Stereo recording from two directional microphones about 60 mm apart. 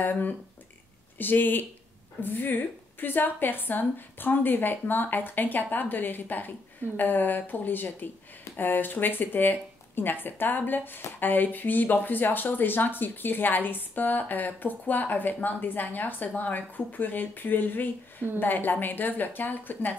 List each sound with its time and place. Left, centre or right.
0.0 s speech: left